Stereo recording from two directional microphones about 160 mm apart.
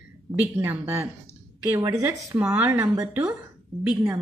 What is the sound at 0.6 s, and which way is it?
A woman's voice, 15° right (ahead or behind).